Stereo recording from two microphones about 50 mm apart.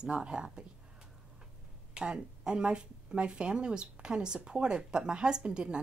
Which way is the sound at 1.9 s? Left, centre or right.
Centre.